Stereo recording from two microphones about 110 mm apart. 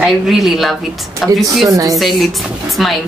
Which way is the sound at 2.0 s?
Centre (ahead or behind).